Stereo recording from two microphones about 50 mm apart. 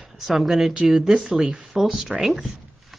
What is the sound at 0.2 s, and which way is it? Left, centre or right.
Speech, centre.